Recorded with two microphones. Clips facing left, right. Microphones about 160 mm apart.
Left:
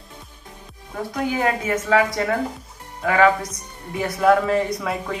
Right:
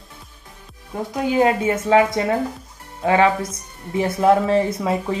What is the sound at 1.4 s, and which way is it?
Speech, 25° right (ahead or behind).